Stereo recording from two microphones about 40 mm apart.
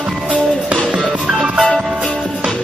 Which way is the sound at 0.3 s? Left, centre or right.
Right.